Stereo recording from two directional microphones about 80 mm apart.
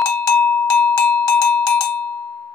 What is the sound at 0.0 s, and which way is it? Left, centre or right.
Cowbell, left.